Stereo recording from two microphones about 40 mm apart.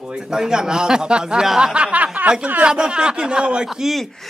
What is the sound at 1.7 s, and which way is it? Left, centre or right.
Speech, right.